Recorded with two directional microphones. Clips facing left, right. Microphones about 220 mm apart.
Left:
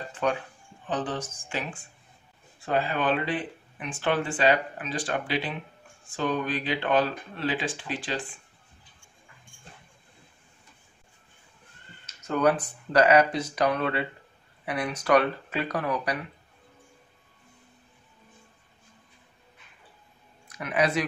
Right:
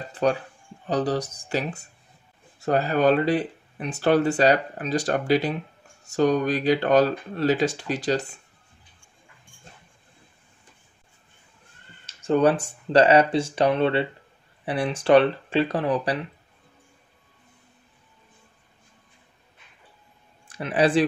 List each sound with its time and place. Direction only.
0.1 s speech: 35° right (ahead or behind)
12.1 s speech: 30° right (ahead or behind)
20.4 s speech: 30° right (ahead or behind)